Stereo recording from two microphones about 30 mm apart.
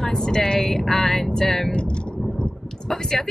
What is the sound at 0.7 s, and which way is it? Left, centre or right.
Speech, centre.